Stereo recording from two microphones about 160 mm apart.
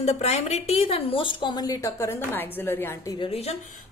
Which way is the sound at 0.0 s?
40° left (ahead or behind).